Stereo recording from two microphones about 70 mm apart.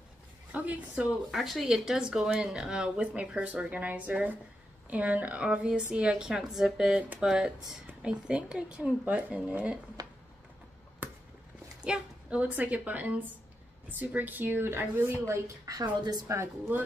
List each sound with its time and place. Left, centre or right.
0.5 s a woman's voice: right
1.3 s a woman's voice: centre
7.0 s a woman's voice: right
10.0 s a sound: right
11.0 s a sound: right
11.8 s a woman's voice: centre; by 15.1 s right
15.2 s a woman's voice: right
16.3 s speech: right